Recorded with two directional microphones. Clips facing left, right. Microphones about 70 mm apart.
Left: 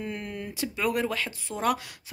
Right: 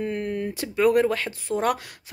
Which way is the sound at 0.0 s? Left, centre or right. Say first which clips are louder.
Right 8 dB; right.